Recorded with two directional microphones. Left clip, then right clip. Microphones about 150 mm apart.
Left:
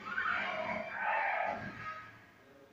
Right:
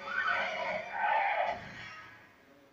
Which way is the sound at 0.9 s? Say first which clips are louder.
Right 4 dB; 45° right (ahead or behind).